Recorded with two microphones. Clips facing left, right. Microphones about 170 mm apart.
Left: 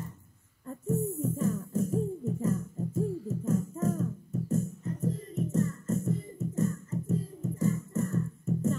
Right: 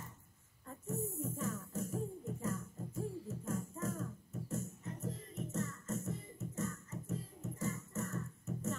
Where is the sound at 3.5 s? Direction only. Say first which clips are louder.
Left 11 dB; 40° left (ahead or behind).